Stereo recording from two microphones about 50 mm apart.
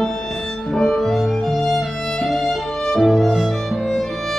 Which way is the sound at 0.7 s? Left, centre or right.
Centre.